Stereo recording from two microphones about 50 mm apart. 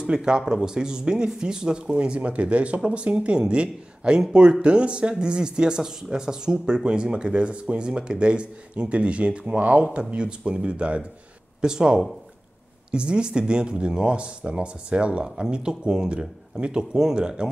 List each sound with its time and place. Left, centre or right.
0.0 s speech: centre